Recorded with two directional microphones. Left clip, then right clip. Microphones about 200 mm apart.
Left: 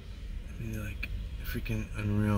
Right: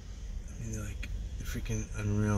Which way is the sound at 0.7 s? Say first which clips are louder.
Left 4 dB; 5° left (ahead or behind).